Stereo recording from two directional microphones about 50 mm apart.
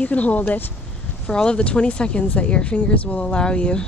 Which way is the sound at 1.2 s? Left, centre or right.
Centre.